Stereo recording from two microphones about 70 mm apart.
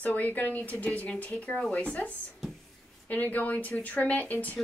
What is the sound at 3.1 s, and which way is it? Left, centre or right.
Speech, left.